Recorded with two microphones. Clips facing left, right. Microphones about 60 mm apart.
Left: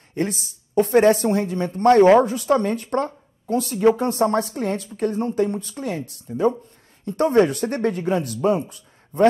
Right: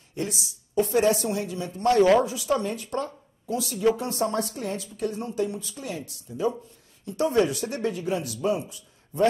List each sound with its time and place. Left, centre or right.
0.1 s a woman's voice: left